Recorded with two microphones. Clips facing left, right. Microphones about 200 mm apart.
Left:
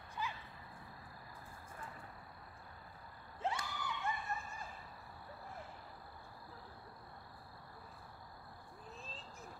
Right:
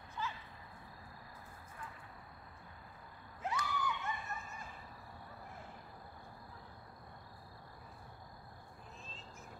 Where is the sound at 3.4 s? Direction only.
30° left (ahead or behind).